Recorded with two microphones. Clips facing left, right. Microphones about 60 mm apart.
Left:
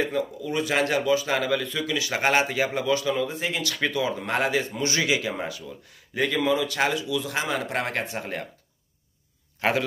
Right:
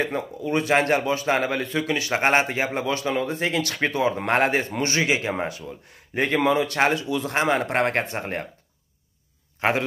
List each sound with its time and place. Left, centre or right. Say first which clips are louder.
0.0 s speech: even; right
3.3 s speech: right 4 dB; right
9.6 s a man's voice: right 1 dB; right